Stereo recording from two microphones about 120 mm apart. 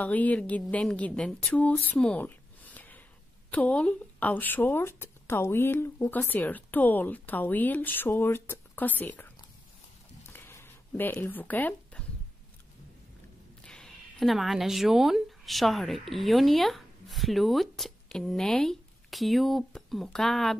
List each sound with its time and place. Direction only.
0.0 s speech: 15° left (ahead or behind)
10.3 s a sound: 20° left (ahead or behind)
13.7 s speech: 5° left (ahead or behind)